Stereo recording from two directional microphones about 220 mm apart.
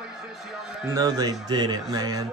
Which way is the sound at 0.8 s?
15° right (ahead or behind).